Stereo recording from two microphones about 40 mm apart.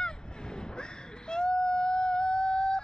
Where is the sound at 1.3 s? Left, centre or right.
Left.